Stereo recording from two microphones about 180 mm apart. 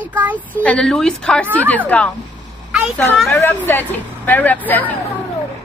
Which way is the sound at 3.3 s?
10° left (ahead or behind).